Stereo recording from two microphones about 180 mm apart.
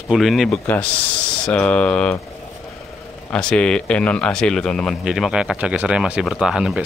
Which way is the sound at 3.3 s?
5° left (ahead or behind).